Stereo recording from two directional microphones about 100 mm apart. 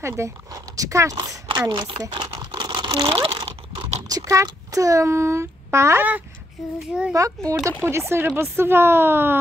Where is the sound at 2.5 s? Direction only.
50° right (ahead or behind); by 3.9 s 75° right (ahead or behind).